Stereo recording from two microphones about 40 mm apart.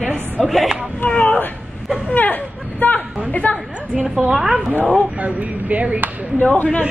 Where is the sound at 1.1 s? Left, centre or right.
Left.